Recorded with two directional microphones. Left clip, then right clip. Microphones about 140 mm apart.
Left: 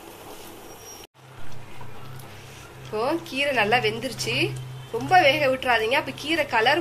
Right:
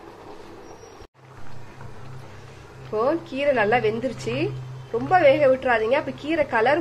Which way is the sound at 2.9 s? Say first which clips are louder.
Right 2 dB; 25° right (ahead or behind).